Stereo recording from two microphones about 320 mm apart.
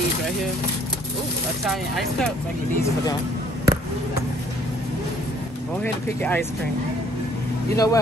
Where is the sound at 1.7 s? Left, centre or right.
Centre.